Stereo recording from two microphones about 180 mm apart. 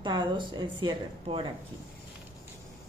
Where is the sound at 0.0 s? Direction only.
25° right (ahead or behind).